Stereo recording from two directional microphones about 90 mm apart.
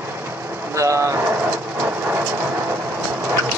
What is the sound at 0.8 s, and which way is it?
Speech, 35° right (ahead or behind).